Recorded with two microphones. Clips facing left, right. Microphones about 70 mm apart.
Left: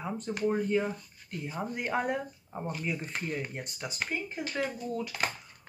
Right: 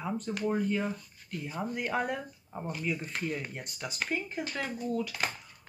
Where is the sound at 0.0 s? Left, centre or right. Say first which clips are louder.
Left 1 dB; centre.